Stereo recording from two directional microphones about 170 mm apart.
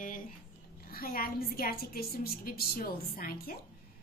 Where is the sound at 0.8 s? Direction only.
60° left (ahead or behind).